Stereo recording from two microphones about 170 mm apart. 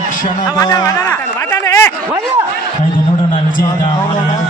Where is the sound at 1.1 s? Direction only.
15° left (ahead or behind).